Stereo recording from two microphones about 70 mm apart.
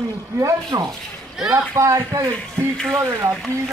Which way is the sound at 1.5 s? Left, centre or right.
Right.